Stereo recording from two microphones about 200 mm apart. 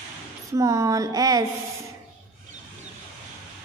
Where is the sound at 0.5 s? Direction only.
15° right (ahead or behind).